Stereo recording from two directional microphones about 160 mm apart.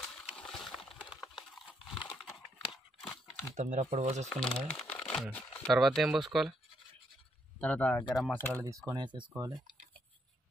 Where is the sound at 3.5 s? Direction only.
50° right (ahead or behind).